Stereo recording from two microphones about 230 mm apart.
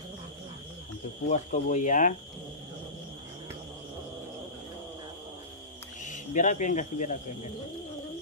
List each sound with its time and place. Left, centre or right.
1.3 s speech: left
6.0 s speech: left